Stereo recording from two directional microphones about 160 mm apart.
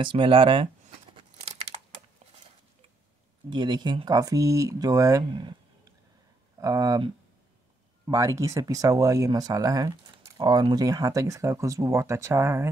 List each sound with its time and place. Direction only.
0.0 s speech: 30° right (ahead or behind)
3.4 s speech: 30° right (ahead or behind)
8.1 s speech: 20° right (ahead or behind)